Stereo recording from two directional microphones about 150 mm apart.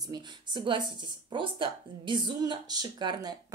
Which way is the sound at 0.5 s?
35° right (ahead or behind).